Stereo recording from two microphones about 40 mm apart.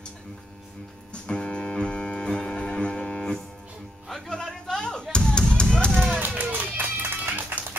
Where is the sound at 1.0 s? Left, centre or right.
Left.